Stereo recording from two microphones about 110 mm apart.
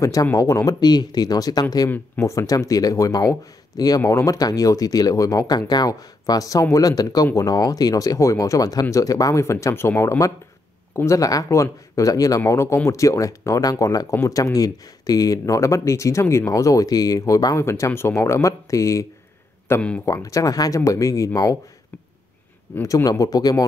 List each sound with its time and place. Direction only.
0.0 s speech: 30° left (ahead or behind)
22.8 s speech: 30° left (ahead or behind)